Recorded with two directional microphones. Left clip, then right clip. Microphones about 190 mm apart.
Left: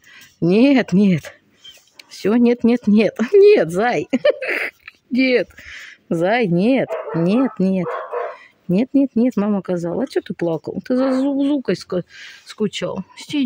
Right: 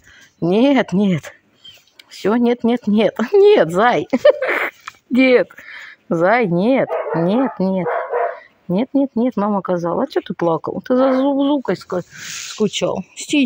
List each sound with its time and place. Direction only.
0.4 s speech: 30° left (ahead or behind)
12.6 s speech: 20° left (ahead or behind)